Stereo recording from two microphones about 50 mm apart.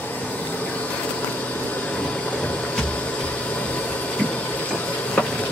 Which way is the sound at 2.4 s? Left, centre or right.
Left.